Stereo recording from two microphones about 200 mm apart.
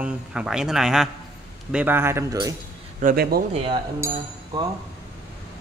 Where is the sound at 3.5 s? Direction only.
30° right (ahead or behind).